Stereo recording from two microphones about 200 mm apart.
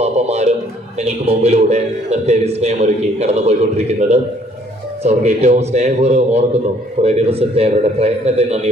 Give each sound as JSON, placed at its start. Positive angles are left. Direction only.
{"t": 0.0, "sound": "a man's voice", "side_deg": -30}